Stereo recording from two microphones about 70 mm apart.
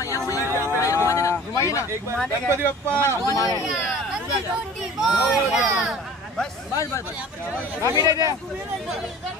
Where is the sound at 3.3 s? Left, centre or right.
Left.